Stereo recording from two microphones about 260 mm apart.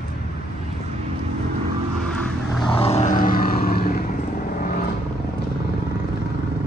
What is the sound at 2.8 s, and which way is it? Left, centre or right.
Vehicle, left.